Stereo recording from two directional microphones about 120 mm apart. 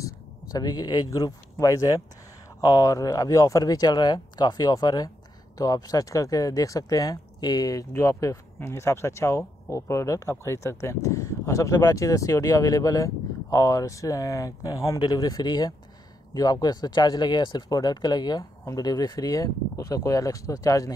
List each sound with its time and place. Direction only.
0.0 s speech: 30° left (ahead or behind)